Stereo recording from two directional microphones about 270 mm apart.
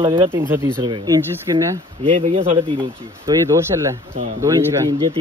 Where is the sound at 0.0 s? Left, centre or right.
Centre.